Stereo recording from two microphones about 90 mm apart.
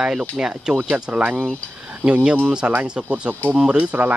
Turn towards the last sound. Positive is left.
turn(degrees=-15)  # may be behind; listen again after turning